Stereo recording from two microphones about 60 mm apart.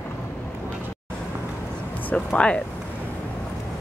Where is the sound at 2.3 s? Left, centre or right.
Centre.